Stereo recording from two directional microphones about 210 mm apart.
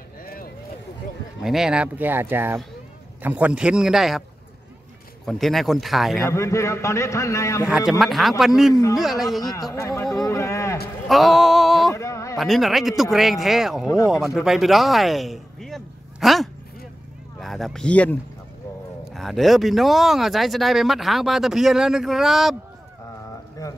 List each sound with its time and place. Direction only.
0.2 s vehicle: 45° left (ahead or behind)
1.4 s speech: centre (ahead or behind)
5.2 s speech: centre (ahead or behind)
6.2 s a man's voice: 15° left (ahead or behind)
7.6 s speech: 5° right (ahead or behind)
9.4 s a man's voice: 20° left (ahead or behind)
11.1 s a sound: centre (ahead or behind)
11.9 s a sound: 15° left (ahead or behind)
12.4 s speech: centre (ahead or behind)
13.8 s a man's voice: 15° left (ahead or behind)
14.1 s speech: centre (ahead or behind)
19.1 s speech: centre (ahead or behind)
23.6 s a sound: 15° left (ahead or behind)